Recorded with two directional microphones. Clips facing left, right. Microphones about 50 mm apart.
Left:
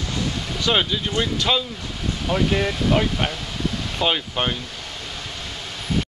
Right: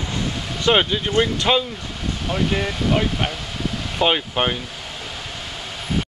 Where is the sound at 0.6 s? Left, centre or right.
Right.